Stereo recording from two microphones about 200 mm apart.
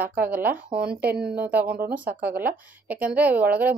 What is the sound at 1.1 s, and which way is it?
Speech, 55° right (ahead or behind).